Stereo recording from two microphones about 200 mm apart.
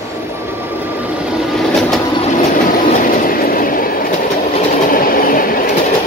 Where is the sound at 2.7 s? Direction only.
40° left (ahead or behind).